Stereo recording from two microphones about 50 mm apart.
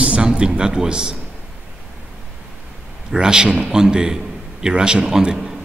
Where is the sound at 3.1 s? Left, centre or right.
Centre.